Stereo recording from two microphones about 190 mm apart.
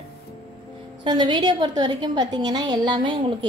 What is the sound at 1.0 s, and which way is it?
A woman's voice, 25° right (ahead or behind).